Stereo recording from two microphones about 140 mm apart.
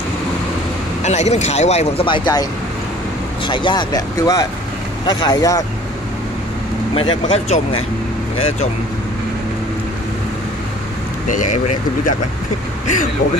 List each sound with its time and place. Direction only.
1.0 s speech: 55° left (ahead or behind)
2.0 s speech: 35° left (ahead or behind)
3.4 s speech: 35° left (ahead or behind)
7.0 s speech: 40° left (ahead or behind)
11.2 s speech: 60° left (ahead or behind)